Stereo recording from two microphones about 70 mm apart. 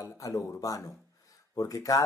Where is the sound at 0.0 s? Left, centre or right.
Left.